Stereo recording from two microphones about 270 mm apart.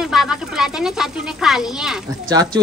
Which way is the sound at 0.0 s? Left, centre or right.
Centre.